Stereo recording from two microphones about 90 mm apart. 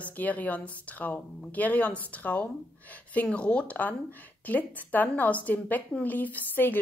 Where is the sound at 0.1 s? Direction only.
20° left (ahead or behind).